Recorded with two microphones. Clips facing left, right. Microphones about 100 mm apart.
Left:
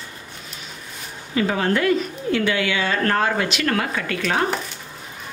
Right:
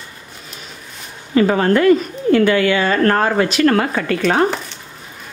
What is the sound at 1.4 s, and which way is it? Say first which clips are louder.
Speech: right 7 dB; 45° right (ahead or behind).